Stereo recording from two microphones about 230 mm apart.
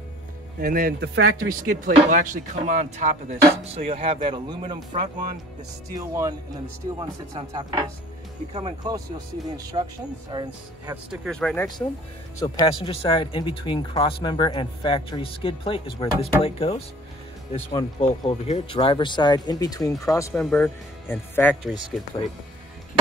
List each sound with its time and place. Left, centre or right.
0.6 s speech: right; by 11.0 s centre
11.1 s speech: centre
12.4 s speech: centre